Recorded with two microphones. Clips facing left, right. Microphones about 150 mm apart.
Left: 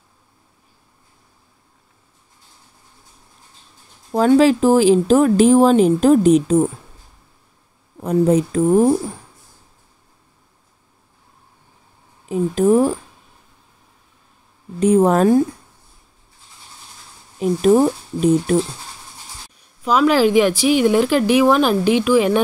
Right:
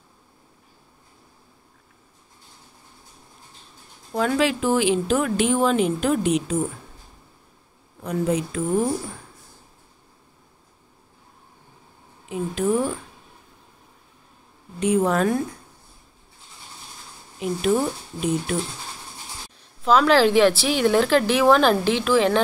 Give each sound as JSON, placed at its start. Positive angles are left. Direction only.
{"t": 4.1, "sound": "speech", "side_deg": 35}
{"t": 8.0, "sound": "speech", "side_deg": 40}
{"t": 12.3, "sound": "speech", "side_deg": 40}
{"t": 14.8, "sound": "speech", "side_deg": 40}
{"t": 17.4, "sound": "speech", "side_deg": 40}
{"t": 19.8, "sound": "speech", "side_deg": 10}